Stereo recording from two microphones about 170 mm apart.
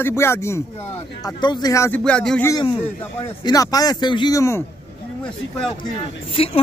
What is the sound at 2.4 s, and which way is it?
A man's voice, 20° left (ahead or behind).